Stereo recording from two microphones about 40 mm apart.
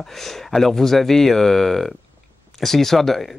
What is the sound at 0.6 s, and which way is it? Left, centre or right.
Speech, centre.